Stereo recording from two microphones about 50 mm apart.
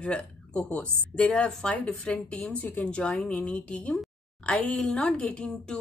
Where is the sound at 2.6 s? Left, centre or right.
Left.